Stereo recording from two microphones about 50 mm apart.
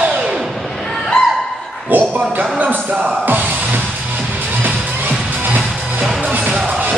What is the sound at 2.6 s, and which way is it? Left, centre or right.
Music, right.